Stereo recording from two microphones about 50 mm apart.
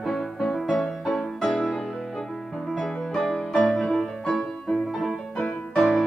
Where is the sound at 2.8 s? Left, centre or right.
Centre.